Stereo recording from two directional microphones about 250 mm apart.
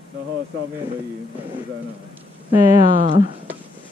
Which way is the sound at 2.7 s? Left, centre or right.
Centre.